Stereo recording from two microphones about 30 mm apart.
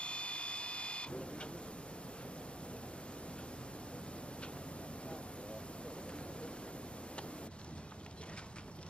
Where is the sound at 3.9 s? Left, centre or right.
Left.